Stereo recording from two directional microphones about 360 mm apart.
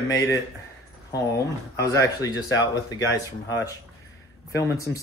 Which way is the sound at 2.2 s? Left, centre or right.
Centre.